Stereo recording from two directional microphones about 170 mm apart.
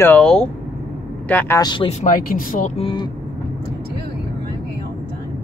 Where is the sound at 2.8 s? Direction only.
30° left (ahead or behind).